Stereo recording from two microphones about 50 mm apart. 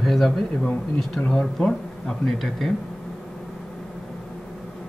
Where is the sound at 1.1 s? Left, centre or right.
Left; by 2.7 s centre.